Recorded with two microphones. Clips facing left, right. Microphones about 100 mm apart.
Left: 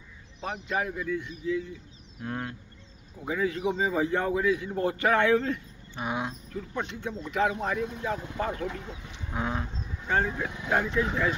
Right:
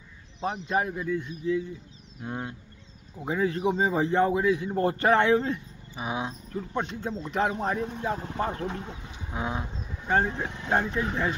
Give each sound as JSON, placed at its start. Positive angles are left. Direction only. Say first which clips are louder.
{"t": 0.4, "sound": "a man's voice", "louder": "right 3 dB", "side_deg": -30}
{"t": 2.2, "sound": "horse", "louder": "even", "side_deg": -20}
{"t": 3.3, "sound": "a man's voice", "louder": "right 2 dB", "side_deg": -35}
{"t": 5.9, "sound": "speech", "louder": "even", "side_deg": -5}
{"t": 6.5, "sound": "a man's voice", "louder": "right 3 dB", "side_deg": -35}
{"t": 9.3, "sound": "horse", "louder": "even", "side_deg": -10}
{"t": 10.0, "sound": "speech", "louder": "right 2 dB", "side_deg": -30}